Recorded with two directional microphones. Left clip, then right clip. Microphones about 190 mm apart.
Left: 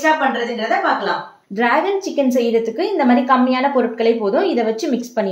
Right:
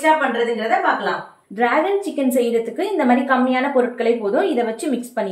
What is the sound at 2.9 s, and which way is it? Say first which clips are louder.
A woman's voice: left 2 dB; 30° left (ahead or behind).